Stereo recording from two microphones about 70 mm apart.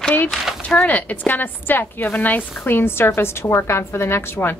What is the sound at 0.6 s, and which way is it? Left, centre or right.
A woman's voice, left.